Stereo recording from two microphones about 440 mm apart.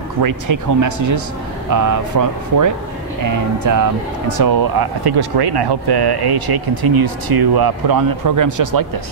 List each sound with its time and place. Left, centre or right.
0.2 s speech: right